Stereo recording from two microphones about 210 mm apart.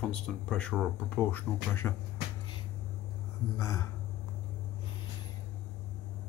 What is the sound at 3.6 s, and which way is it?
Speech, 15° left (ahead or behind).